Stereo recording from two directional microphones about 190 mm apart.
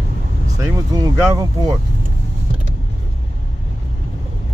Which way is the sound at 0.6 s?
20° right (ahead or behind).